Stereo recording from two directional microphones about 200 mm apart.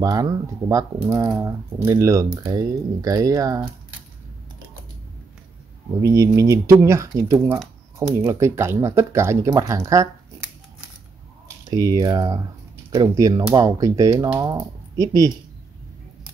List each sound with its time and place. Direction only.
0.0 s speech: 15° right (ahead or behind)
6.0 s speech: 15° right (ahead or behind)
11.4 s speech: 15° right (ahead or behind)